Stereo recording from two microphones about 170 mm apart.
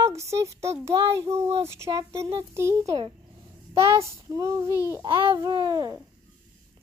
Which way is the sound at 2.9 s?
30° right (ahead or behind).